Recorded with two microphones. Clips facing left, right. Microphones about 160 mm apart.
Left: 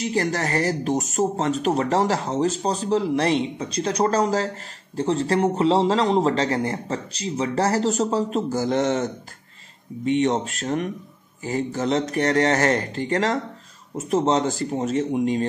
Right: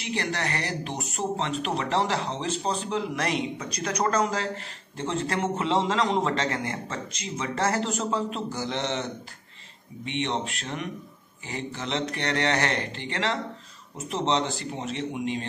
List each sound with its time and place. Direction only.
0.0 s speech: 40° left (ahead or behind)